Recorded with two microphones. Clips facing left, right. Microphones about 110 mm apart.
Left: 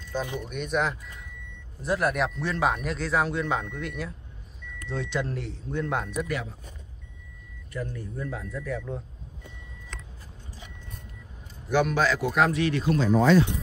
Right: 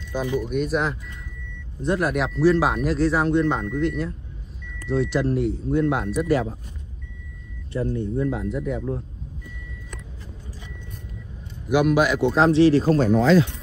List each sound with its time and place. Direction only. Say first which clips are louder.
0.4 s speech: right 4 dB; centre (ahead or behind)
6.2 s speech: right 10 dB; 35° right (ahead or behind)
7.7 s speech: right 10 dB; 25° right (ahead or behind)
11.7 s speech: right 5 dB; 10° right (ahead or behind)
12.2 s speech: right 7 dB; 25° right (ahead or behind)